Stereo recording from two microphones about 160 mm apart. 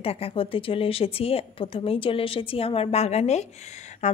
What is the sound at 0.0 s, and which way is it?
A woman's voice, 35° left (ahead or behind).